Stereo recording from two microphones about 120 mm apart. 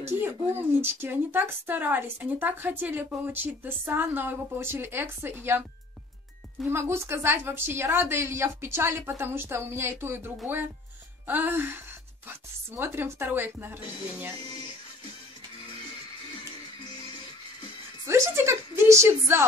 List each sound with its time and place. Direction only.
0.0 s speech: 20° right (ahead or behind)
6.7 s a woman's voice: 20° right (ahead or behind)
18.0 s a woman's voice: 25° right (ahead or behind)